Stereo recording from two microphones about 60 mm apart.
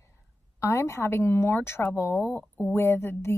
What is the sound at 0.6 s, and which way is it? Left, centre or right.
Speech, left.